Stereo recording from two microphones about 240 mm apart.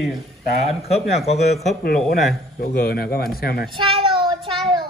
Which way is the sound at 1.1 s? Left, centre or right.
Left.